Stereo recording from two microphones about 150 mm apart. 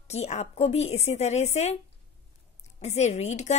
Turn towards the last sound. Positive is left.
turn(degrees=50)  # may be behind; listen again after turning